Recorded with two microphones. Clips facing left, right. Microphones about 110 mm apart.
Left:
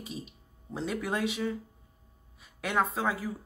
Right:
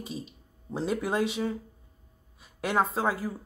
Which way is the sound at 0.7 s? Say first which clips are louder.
Right 4 dB; 35° right (ahead or behind).